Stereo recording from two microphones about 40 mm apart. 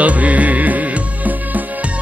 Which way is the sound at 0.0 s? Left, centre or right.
Right.